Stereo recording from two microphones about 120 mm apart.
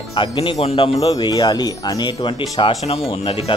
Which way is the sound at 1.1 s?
35° left (ahead or behind).